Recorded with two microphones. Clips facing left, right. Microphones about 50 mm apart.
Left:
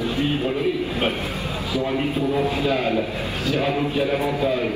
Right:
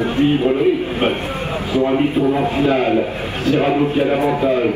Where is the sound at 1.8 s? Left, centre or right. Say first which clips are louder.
Right 8 dB; right.